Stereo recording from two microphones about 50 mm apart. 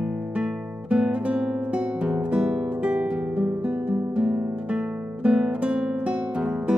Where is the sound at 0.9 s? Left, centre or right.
Right.